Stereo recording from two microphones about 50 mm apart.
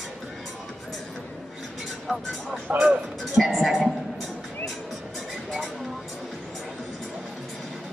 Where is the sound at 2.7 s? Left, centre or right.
Right.